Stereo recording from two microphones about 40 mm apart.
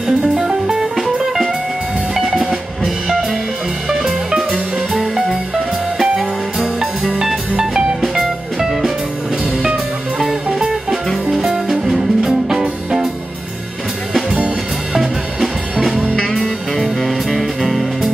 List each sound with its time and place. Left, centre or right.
0.2 s music: right
9.6 s music: centre
15.0 s music: centre
16.3 s music: centre